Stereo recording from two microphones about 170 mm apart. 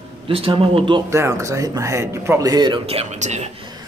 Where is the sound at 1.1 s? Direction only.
15° right (ahead or behind); by 3.5 s 45° right (ahead or behind).